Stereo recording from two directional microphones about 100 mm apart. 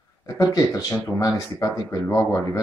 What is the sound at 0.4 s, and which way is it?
Speech, 35° left (ahead or behind).